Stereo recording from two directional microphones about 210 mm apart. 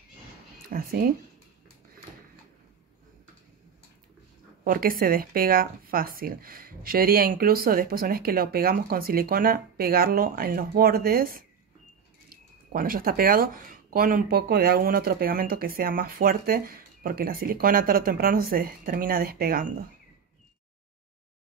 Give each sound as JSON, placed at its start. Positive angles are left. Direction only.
{"t": 0.7, "sound": "speech", "side_deg": -45}
{"t": 4.6, "sound": "speech", "side_deg": -45}